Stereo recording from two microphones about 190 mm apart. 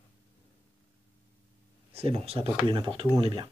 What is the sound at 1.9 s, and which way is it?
Speech, 30° right (ahead or behind).